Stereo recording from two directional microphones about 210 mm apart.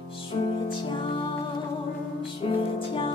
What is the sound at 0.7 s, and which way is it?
Music, 25° left (ahead or behind).